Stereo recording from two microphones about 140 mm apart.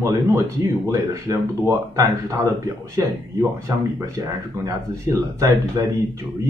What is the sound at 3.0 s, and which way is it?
Speech, 25° right (ahead or behind).